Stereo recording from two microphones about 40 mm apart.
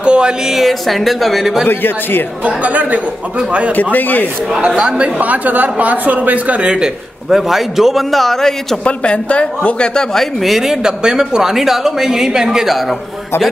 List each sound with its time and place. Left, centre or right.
0.0 s music: right
0.5 s a man's voice: centre
1.7 s a man's voice: left
2.4 s a man's voice: right
3.9 s a man's voice: left
4.6 s a man's voice: right
5.2 s a man's voice: right
6.7 s a man's voice: centre
7.3 s a man's voice: centre
8.8 s speech: left
10.4 s speech: centre